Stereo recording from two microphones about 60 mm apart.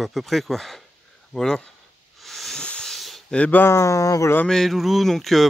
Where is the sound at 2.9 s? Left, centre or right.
Centre.